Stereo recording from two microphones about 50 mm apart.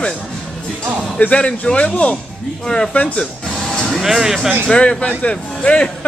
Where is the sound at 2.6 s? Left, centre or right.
Centre.